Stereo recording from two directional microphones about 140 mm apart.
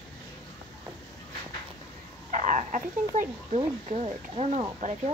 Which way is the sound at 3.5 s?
50° right (ahead or behind).